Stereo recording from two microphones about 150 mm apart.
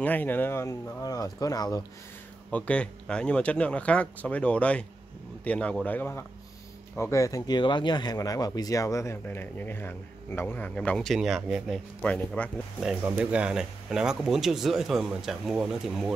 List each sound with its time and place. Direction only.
0.0 s speech: 10° left (ahead or behind)
2.5 s speech: 10° left (ahead or behind)
13.0 s speech: 10° right (ahead or behind)